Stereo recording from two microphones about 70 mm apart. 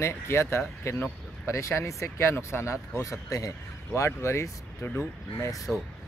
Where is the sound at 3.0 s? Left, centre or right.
Left.